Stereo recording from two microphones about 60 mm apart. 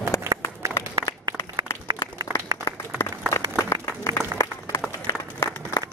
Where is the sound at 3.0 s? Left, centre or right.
Left.